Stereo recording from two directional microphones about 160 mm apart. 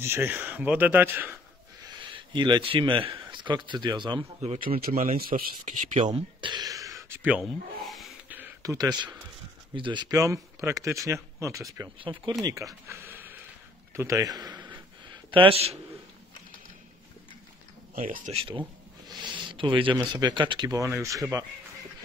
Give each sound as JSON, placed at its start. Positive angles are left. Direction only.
{"t": 0.0, "sound": "speech", "side_deg": -15}
{"t": 2.0, "sound": "speech", "side_deg": -30}
{"t": 4.9, "sound": "a man's voice", "side_deg": -40}
{"t": 5.3, "sound": "speech", "side_deg": -60}
{"t": 6.0, "sound": "speech", "side_deg": -30}
{"t": 7.1, "sound": "speech", "side_deg": -5}
{"t": 8.3, "sound": "a sound", "side_deg": -10}
{"t": 8.7, "sound": "speech", "side_deg": -25}
{"t": 12.0, "sound": "speech", "side_deg": -30}
{"t": 12.8, "sound": "a sound", "side_deg": -15}
{"t": 13.9, "sound": "a man's voice", "side_deg": -20}
{"t": 15.3, "sound": "a man's voice", "side_deg": -35}
{"t": 18.0, "sound": "speech", "side_deg": -60}
{"t": 18.3, "sound": "speech", "side_deg": -35}